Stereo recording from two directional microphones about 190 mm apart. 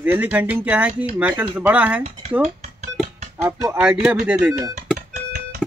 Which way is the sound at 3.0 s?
40° right (ahead or behind).